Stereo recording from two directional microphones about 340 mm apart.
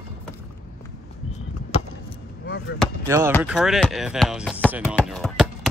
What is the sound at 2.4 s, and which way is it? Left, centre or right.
Basketball bounce, left.